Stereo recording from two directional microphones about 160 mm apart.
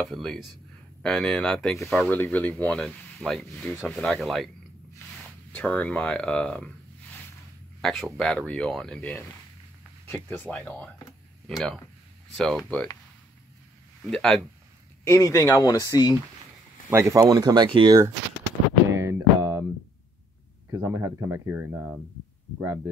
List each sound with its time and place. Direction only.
0.0 s speech: centre (ahead or behind)
5.5 s speech: 10° left (ahead or behind)
7.8 s speech: 5° left (ahead or behind)
14.1 s speech: 5° left (ahead or behind)
15.0 s speech: 20° left (ahead or behind)
16.9 s speech: 20° right (ahead or behind)
18.9 s music: 15° right (ahead or behind)
20.7 s speech: 15° right (ahead or behind)